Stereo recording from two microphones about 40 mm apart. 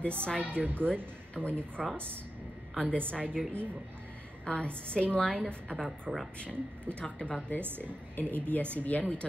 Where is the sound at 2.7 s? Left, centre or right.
Left.